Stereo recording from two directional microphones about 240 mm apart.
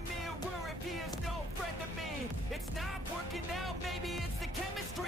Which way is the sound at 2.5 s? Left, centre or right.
Centre.